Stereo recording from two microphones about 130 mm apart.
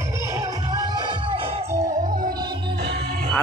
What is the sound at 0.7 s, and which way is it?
Music, 30° right (ahead or behind).